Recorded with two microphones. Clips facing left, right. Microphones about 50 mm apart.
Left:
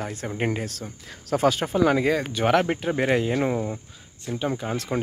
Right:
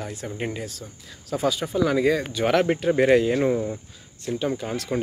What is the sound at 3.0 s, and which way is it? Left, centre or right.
Speech, centre.